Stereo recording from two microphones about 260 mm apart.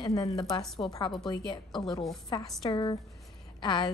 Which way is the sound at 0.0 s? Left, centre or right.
Centre.